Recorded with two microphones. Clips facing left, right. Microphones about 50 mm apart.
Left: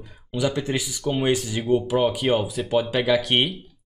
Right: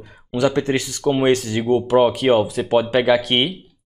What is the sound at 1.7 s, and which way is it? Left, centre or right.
Speech, right.